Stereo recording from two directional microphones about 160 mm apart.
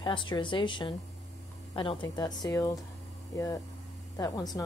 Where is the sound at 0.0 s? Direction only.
30° left (ahead or behind).